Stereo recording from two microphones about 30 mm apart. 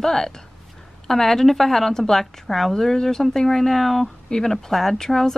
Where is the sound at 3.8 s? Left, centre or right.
Centre.